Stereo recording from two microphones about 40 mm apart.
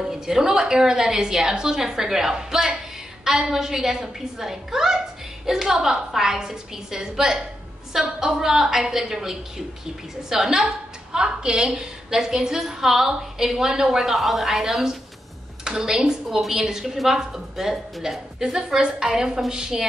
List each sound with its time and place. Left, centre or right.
0.0 s a woman's voice: centre